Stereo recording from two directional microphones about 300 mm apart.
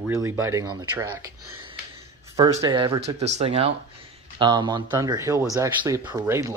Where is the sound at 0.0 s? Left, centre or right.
Centre.